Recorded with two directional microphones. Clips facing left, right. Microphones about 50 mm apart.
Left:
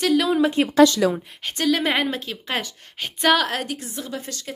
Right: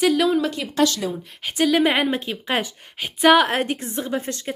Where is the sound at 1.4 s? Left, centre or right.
Centre.